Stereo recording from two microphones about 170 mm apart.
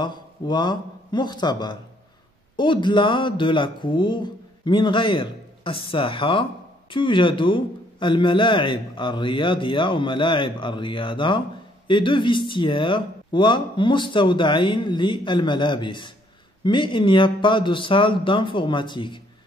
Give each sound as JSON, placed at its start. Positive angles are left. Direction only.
{"t": 0.0, "sound": "a man's voice", "side_deg": 25}